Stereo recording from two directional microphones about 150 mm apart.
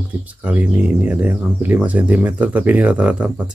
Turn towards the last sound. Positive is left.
turn(degrees=-5)  # may be behind; listen again after turning